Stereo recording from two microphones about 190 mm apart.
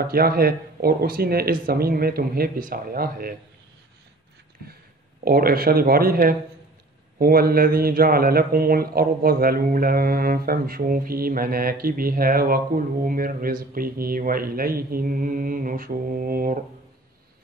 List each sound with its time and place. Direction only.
0.0 s speech: 55° right (ahead or behind)
5.2 s speech: 55° right (ahead or behind)